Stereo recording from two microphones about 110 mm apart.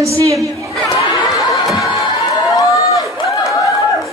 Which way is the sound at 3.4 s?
30° left (ahead or behind).